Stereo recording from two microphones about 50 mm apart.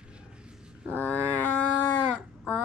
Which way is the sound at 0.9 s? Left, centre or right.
Left.